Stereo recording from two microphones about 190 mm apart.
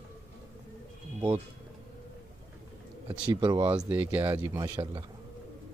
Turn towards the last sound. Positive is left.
turn(degrees=-20)  # may be behind; listen again after turning